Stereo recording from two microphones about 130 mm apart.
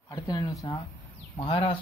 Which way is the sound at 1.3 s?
50° left (ahead or behind).